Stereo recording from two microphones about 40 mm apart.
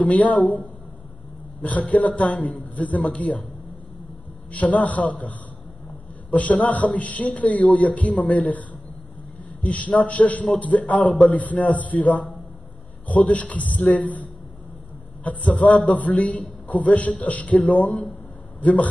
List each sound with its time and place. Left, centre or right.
0.0 s a man's voice: left
4.5 s a man's voice: left
6.3 s a man's voice: left